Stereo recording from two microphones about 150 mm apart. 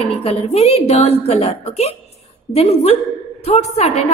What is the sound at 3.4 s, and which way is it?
Speech, 45° left (ahead or behind).